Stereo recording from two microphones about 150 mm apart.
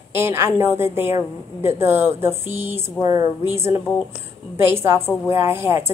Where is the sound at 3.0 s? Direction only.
50° left (ahead or behind).